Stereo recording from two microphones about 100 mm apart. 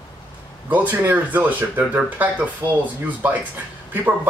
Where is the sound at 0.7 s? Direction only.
15° right (ahead or behind).